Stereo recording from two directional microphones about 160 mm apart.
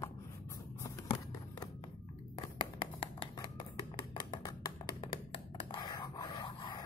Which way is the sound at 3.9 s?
30° left (ahead or behind).